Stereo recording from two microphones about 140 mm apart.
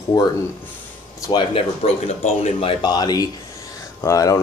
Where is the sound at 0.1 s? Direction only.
30° left (ahead or behind).